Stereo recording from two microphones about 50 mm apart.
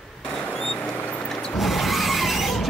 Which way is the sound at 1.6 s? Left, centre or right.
Centre.